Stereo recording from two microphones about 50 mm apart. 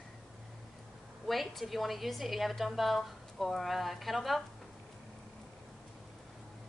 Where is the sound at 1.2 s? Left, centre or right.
Centre.